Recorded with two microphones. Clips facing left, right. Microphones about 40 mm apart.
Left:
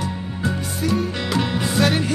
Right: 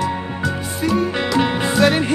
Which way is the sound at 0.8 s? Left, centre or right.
Centre.